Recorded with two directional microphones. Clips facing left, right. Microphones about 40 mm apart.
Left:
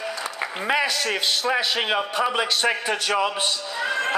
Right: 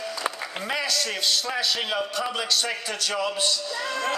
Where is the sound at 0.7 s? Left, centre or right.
Left.